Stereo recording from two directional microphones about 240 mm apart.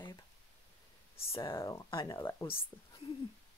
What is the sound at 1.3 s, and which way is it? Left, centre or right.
Speech, centre.